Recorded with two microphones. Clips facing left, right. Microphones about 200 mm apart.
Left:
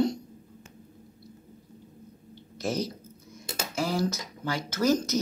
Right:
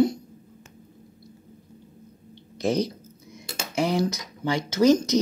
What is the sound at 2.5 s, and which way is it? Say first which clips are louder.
Speech: right 6 dB; 15° right (ahead or behind).